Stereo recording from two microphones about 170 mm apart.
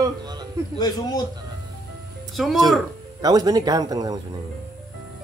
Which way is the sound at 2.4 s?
Centre (ahead or behind).